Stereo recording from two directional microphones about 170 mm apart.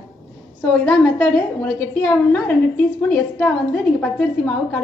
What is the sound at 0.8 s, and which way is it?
A woman's voice, 10° left (ahead or behind).